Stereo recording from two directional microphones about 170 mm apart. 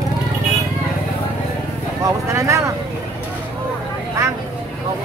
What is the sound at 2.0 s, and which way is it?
Speech, 20° right (ahead or behind).